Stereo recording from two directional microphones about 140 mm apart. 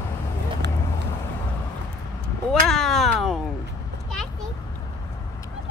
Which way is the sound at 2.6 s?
Centre (ahead or behind).